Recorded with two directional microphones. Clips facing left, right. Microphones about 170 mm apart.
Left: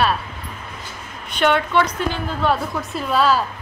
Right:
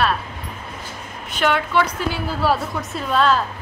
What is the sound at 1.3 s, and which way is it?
A woman's voice, 5° right (ahead or behind).